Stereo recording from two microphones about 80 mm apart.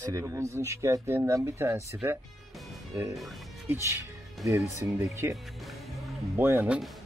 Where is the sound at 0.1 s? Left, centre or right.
Right.